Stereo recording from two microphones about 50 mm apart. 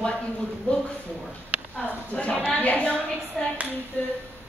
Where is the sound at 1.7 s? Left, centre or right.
Left.